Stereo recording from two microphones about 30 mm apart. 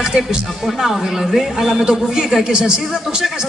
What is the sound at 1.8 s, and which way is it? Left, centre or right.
A man's voice, right.